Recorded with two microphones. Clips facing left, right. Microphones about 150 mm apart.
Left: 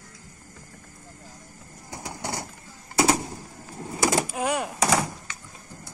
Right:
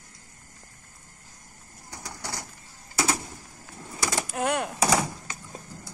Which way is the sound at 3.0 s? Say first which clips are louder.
Left 6 dB; 30° left (ahead or behind).